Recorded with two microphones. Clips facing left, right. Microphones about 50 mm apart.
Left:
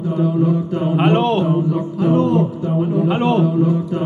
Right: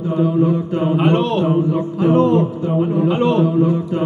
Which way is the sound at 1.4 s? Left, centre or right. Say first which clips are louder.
Right 1 dB; right.